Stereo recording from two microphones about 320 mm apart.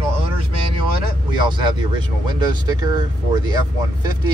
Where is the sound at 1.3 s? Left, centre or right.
Centre.